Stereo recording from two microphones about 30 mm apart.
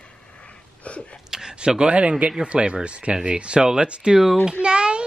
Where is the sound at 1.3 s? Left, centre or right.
Right.